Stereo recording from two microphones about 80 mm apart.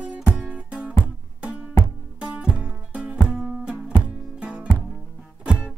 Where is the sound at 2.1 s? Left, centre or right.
Centre.